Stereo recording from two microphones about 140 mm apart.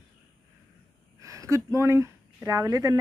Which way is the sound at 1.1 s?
20° right (ahead or behind).